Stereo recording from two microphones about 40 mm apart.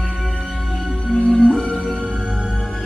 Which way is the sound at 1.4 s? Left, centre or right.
Left.